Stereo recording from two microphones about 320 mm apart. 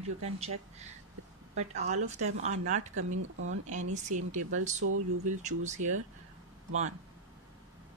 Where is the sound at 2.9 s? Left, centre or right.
Right.